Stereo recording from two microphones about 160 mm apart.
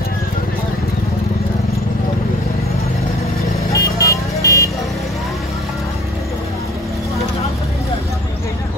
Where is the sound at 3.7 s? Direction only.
20° left (ahead or behind).